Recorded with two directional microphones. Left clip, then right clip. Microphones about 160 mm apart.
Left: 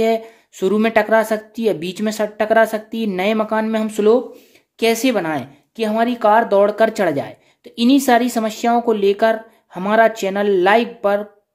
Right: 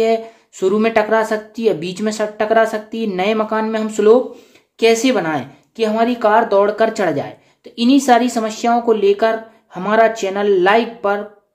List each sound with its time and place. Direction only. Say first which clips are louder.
0.0 s speech: right 2 dB; 50° left (ahead or behind)